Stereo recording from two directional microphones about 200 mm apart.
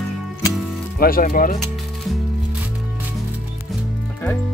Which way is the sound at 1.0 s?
45° left (ahead or behind).